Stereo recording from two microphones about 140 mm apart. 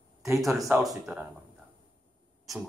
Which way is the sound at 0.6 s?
25° right (ahead or behind).